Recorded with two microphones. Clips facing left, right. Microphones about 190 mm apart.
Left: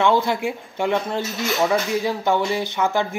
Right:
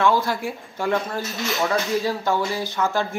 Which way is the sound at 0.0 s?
20° left (ahead or behind).